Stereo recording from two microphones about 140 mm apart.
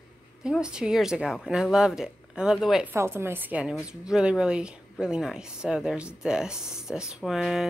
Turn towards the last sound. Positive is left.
turn(degrees=0)  # may be behind; listen again after turning